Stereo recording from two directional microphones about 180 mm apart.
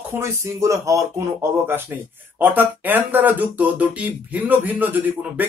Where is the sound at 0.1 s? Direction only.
15° right (ahead or behind).